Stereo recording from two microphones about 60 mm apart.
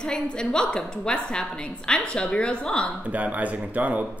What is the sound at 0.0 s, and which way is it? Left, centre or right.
A woman's voice, centre.